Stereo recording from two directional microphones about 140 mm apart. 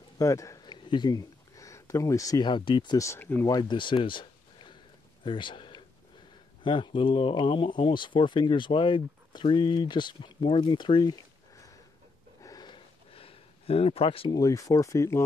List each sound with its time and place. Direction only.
0.2 s speech: 20° left (ahead or behind)
3.0 s speech: 15° left (ahead or behind)
3.4 s speech: 30° left (ahead or behind)
5.2 s a sound: 35° left (ahead or behind)
6.6 s speech: 35° left (ahead or behind)
12.4 s a sound: 25° left (ahead or behind); by 14.3 s 40° left (ahead or behind)
14.3 s speech: 25° left (ahead or behind)